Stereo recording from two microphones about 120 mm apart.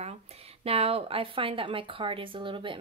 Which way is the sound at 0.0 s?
60° right (ahead or behind).